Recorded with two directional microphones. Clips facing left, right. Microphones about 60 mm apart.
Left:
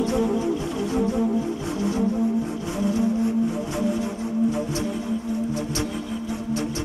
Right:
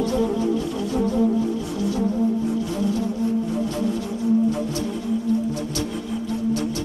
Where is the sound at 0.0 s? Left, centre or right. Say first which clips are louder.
Right 1 dB; left.